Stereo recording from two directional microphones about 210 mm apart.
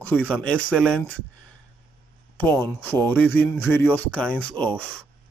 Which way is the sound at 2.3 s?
5° left (ahead or behind).